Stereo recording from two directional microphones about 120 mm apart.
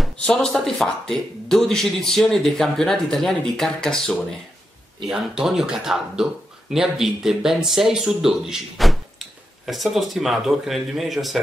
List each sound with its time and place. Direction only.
0.0 s speech: 5° left (ahead or behind)